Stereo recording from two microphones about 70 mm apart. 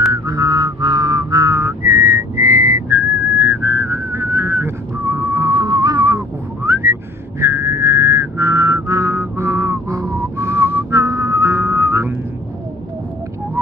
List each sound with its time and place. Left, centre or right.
0.1 s whistling: right
5.5 s music: right
6.0 s whistling: right